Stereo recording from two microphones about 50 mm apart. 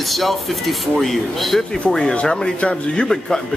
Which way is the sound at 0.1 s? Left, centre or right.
Centre.